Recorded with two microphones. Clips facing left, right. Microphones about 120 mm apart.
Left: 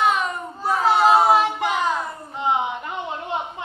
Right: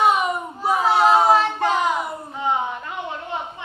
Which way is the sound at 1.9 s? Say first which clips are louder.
Right 1 dB; 15° right (ahead or behind).